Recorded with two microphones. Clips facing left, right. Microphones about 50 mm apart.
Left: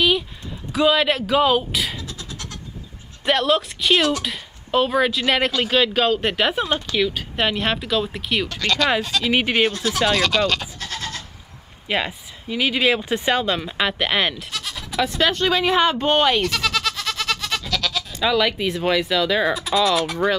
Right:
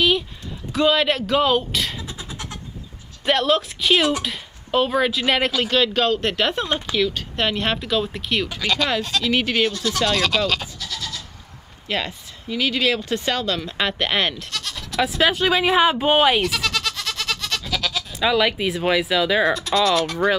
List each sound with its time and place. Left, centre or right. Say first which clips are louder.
0.7 s speech: left 1 dB; centre
2.0 s vehicle: right 1 dB; centre
3.3 s speech: even; centre
9.3 s speech: left 2 dB; centre
9.9 s speech: left 2 dB; centre
10.8 s goat: left 1 dB; left
11.9 s speech: left 2 dB; centre
13.7 s speech: even; centre
15.0 s speech: right 1 dB; centre
19.5 s speech: even; centre